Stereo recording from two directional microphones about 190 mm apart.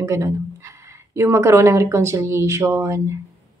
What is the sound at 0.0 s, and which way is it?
Speech, 15° right (ahead or behind).